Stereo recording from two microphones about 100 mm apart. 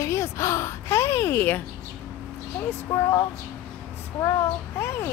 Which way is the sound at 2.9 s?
40° left (ahead or behind).